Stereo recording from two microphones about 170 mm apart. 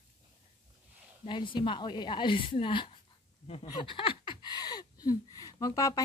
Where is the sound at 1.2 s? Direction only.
30° left (ahead or behind).